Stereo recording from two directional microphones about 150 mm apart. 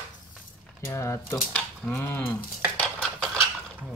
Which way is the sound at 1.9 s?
15° left (ahead or behind).